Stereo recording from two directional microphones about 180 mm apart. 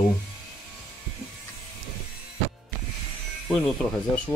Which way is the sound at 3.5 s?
Centre (ahead or behind).